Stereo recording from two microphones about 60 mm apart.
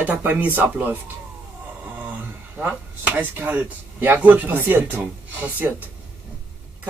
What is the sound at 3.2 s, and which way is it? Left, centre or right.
Speech, right.